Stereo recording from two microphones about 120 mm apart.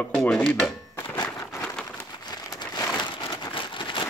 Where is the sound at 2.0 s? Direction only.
30° left (ahead or behind).